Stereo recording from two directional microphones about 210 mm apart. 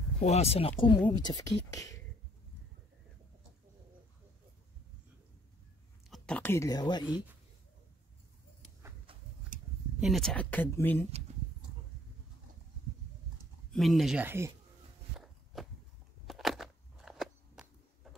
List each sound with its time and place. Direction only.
0.2 s speech: 30° left (ahead or behind)
6.0 s speech: centre (ahead or behind); by 7.1 s 20° left (ahead or behind)
9.5 s a sound: 40° right (ahead or behind)
9.9 s speech: centre (ahead or behind)
13.7 s speech: centre (ahead or behind)
15.5 s a sound: centre (ahead or behind)